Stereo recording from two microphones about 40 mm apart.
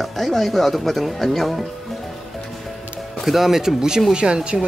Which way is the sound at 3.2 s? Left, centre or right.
Centre.